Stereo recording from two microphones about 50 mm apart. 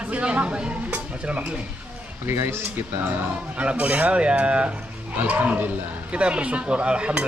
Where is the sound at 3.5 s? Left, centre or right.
Right.